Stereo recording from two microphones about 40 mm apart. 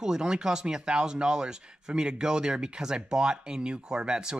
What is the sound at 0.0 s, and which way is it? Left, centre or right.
Speech, centre.